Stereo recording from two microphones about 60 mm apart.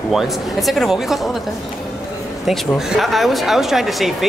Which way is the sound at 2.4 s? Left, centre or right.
Centre.